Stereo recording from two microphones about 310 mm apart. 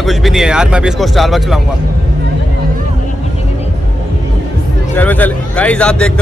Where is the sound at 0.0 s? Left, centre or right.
Centre.